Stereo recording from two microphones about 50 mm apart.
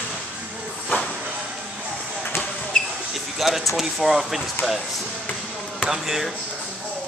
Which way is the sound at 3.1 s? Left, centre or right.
Centre.